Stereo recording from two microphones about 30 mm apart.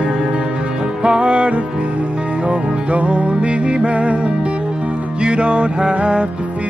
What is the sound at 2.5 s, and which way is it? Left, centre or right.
Music, right.